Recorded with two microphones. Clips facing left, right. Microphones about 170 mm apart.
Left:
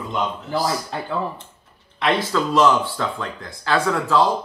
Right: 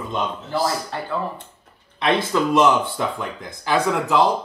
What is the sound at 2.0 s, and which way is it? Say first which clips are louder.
Speech: right 1 dB; 20° right (ahead or behind).